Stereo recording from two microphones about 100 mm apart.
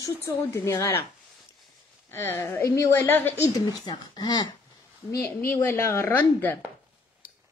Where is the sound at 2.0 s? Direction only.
25° left (ahead or behind).